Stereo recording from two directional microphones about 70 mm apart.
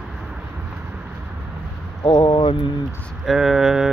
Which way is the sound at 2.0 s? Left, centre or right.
Left.